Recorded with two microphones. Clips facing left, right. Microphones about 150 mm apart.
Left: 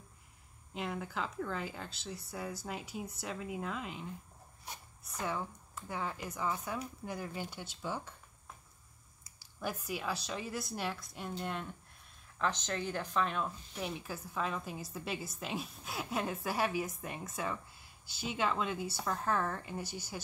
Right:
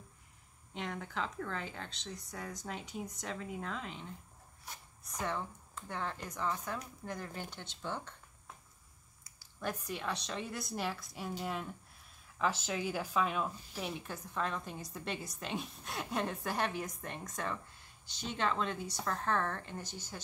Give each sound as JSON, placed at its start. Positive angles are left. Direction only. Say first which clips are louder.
{"t": 0.7, "sound": "a woman's voice", "louder": "left 1 dB", "side_deg": 5}
{"t": 5.2, "sound": "speech", "louder": "even", "side_deg": 5}
{"t": 9.6, "sound": "a woman's voice", "louder": "left 1 dB", "side_deg": 5}